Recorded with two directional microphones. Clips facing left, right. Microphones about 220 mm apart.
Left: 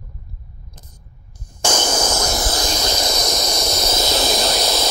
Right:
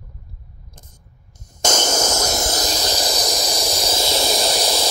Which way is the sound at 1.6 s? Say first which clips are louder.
Even; 40° right (ahead or behind).